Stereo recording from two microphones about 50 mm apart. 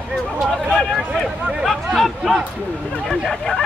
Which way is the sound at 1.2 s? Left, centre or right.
Centre.